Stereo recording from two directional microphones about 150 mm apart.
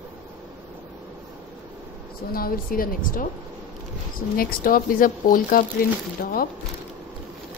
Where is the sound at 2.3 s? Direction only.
75° left (ahead or behind).